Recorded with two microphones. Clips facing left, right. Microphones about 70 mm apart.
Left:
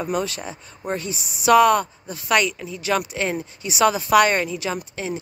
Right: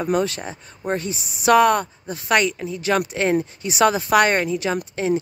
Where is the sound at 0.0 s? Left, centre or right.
Right.